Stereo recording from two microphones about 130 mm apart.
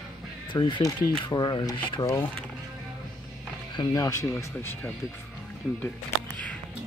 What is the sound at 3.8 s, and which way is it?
Speech, 25° left (ahead or behind).